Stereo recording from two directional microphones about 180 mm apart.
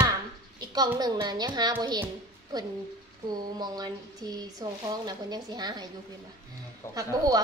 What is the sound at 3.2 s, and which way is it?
Speech, 20° right (ahead or behind).